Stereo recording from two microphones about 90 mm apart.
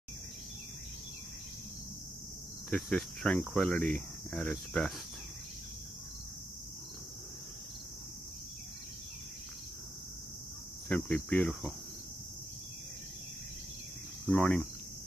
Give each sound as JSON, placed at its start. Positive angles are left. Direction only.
{"t": 2.7, "sound": "cricket", "side_deg": 5}
{"t": 11.1, "sound": "cricket", "side_deg": 20}
{"t": 14.2, "sound": "cricket", "side_deg": 15}